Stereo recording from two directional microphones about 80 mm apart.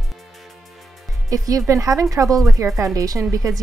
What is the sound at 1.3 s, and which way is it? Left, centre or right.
Speech, right.